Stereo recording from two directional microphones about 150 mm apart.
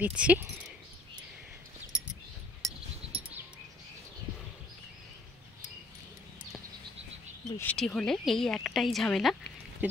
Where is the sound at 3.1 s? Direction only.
40° right (ahead or behind).